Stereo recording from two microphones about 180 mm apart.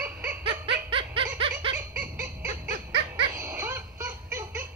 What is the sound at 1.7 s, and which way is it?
Baby laughter, 10° right (ahead or behind).